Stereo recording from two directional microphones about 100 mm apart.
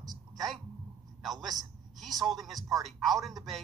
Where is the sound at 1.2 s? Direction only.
Centre (ahead or behind).